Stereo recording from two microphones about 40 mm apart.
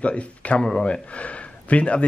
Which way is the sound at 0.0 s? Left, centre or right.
Left.